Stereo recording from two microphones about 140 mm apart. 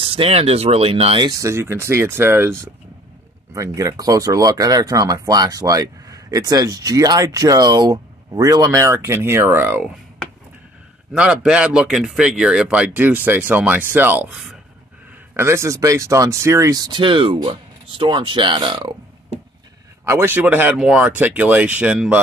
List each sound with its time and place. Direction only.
0.0 s speech: 40° right (ahead or behind)
1.4 s speech: 20° right (ahead or behind)
11.1 s speech: 5° right (ahead or behind)
15.3 s speech: 20° right (ahead or behind)
20.1 s speech: 15° right (ahead or behind)